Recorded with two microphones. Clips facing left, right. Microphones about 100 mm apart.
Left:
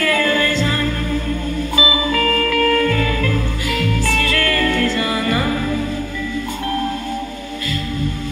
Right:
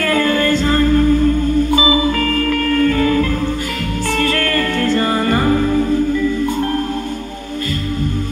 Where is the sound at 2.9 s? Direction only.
35° right (ahead or behind).